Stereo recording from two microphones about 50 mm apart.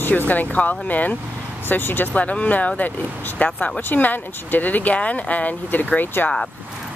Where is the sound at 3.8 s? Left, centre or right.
Left.